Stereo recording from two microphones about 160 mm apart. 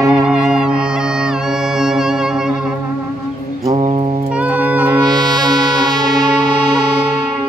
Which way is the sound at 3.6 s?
40° right (ahead or behind).